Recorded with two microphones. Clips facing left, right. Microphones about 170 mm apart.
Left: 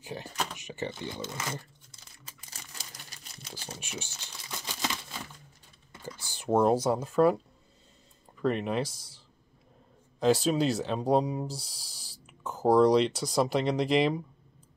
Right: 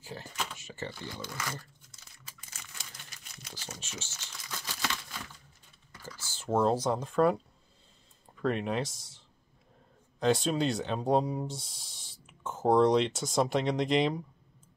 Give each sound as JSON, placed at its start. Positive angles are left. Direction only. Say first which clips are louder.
{"t": 0.0, "sound": "speech", "louder": "left 4 dB", "side_deg": 15}
{"t": 2.5, "sound": "crumpling", "louder": "left 2 dB", "side_deg": 35}
{"t": 3.8, "sound": "speech", "louder": "left 4 dB", "side_deg": 15}
{"t": 4.5, "sound": "crumpling", "louder": "left 2 dB", "side_deg": 20}
{"t": 5.9, "sound": "speech", "louder": "left 4 dB", "side_deg": 15}
{"t": 8.4, "sound": "speech", "louder": "left 2 dB", "side_deg": 0}
{"t": 10.2, "sound": "speech", "louder": "left 3 dB", "side_deg": 0}